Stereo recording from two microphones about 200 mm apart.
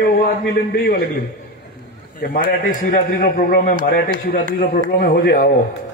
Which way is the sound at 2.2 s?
45° left (ahead or behind).